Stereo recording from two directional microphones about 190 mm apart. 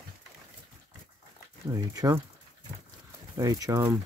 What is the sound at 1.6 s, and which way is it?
Speech, 20° right (ahead or behind).